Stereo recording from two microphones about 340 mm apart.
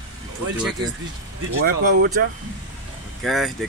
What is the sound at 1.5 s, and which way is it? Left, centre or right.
Speech, right.